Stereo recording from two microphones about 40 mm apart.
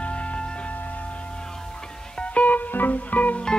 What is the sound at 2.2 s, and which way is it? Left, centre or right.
Music, left.